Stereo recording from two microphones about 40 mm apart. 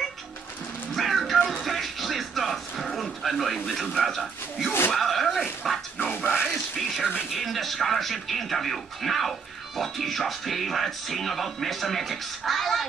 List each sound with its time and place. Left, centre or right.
0.9 s music: centre
2.9 s a man's voice: centre
4.9 s a sound: centre
6.1 s music: left
6.5 s music: centre
7.2 s speech: centre